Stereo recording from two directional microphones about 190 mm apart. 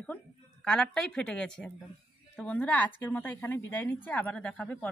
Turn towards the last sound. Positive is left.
turn(degrees=5)  # may be behind; listen again after turning